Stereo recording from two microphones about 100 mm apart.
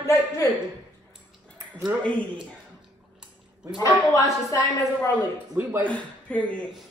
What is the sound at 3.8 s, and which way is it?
A woman's voice, 35° left (ahead or behind).